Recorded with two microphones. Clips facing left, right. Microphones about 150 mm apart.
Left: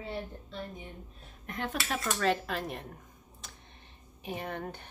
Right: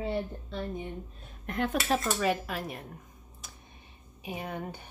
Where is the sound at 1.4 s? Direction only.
50° right (ahead or behind).